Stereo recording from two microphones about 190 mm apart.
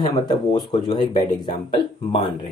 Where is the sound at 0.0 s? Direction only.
25° left (ahead or behind).